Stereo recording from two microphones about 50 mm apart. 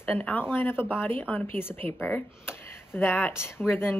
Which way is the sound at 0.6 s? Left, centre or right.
Left.